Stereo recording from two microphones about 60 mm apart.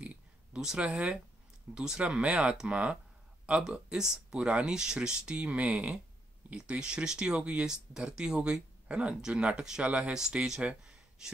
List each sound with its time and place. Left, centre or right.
0.0 s a sound: centre
0.8 s speech: centre
10.1 s speech: centre
10.6 s speech: right